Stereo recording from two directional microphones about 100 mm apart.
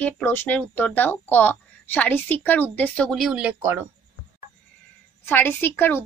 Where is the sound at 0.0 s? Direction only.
20° left (ahead or behind).